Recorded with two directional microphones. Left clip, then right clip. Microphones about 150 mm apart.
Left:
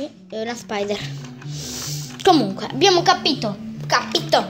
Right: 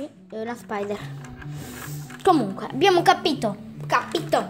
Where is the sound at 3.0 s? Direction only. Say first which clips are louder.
Left 2 dB; 80° right.